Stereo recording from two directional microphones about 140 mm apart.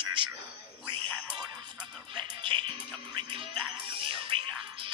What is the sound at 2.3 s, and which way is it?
Music, 35° right (ahead or behind).